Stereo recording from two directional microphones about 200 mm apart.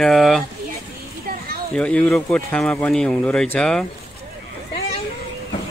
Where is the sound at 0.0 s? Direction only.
Centre (ahead or behind).